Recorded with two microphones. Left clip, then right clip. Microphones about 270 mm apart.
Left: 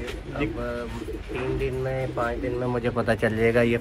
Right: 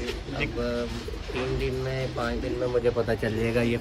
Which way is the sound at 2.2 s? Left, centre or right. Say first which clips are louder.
Left 2 dB; left.